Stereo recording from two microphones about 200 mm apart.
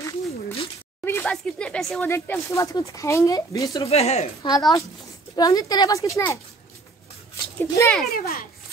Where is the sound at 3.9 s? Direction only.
30° left (ahead or behind).